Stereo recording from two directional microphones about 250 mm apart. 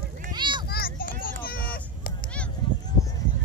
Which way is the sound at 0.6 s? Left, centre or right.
Left.